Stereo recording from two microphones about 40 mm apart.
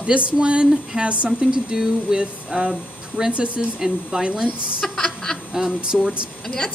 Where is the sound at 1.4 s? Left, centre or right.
Centre.